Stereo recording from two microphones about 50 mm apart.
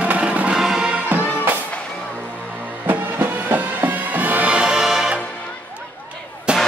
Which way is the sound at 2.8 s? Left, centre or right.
Right.